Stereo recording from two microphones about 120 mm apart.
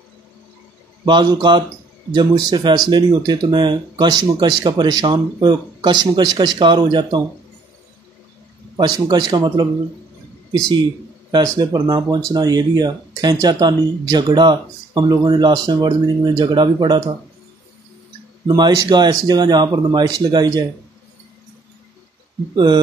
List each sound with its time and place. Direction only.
1.0 s speech: 40° right (ahead or behind)
8.7 s speech: 35° right (ahead or behind)
11.3 s speech: 35° right (ahead or behind)
18.5 s speech: 35° right (ahead or behind)